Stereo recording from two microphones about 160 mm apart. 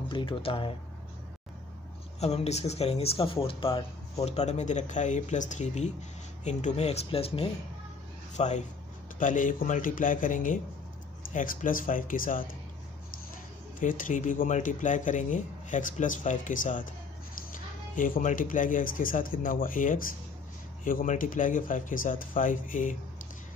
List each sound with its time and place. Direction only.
0.1 s speech: 30° left (ahead or behind)
2.1 s speech: 40° left (ahead or behind); by 12.4 s 60° left (ahead or behind)
13.7 s speech: 55° left (ahead or behind)
17.9 s speech: 55° left (ahead or behind)